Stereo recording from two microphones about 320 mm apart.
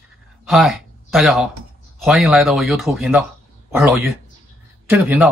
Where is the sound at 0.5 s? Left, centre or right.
Centre.